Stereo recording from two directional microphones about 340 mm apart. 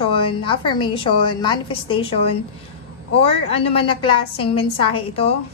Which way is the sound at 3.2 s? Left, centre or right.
Centre.